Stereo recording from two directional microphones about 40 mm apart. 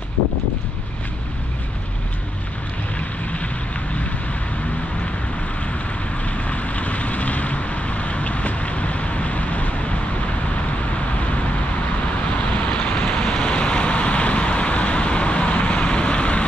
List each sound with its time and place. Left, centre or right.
6.2 s vehicle: left
12.4 s vehicle: left